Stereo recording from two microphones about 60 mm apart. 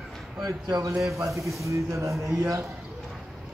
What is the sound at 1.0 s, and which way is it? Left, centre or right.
A man's voice, right.